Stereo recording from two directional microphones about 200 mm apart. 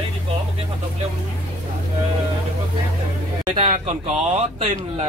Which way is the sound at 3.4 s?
20° right (ahead or behind).